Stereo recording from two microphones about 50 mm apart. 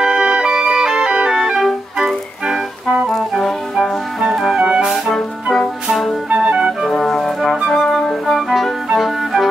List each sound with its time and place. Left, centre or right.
0.0 s music: centre
3.3 s music: centre
4.6 s music: centre
5.9 s music: centre
6.3 s music: right
6.9 s music: centre